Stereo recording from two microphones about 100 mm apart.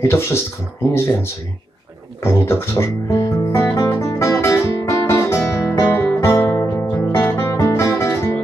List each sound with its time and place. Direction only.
0.0 s speech: 25° left (ahead or behind)
2.2 s music: 25° left (ahead or behind)